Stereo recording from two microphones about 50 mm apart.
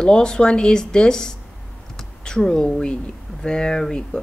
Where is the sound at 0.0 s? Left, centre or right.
Centre.